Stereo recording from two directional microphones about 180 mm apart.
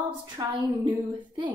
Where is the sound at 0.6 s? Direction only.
25° right (ahead or behind).